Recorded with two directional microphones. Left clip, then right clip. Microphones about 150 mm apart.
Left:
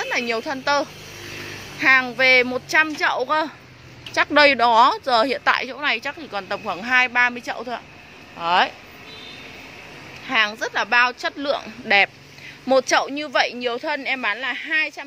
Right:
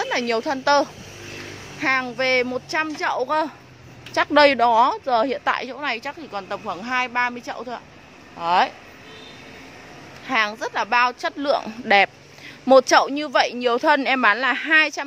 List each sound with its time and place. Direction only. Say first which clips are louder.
0.0 s a woman's voice: right 1 dB; 30° right (ahead or behind)
1.8 s speech: left 5 dB; 5° right (ahead or behind)
8.4 s speech: even; 10° right (ahead or behind)
10.2 s speech: left 1 dB; 15° right (ahead or behind)
13.7 s speech: right 6 dB; 45° right (ahead or behind)